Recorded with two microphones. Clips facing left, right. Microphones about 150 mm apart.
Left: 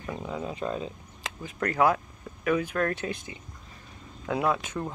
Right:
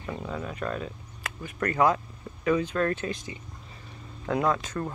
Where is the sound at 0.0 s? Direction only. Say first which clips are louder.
Even; 10° left (ahead or behind).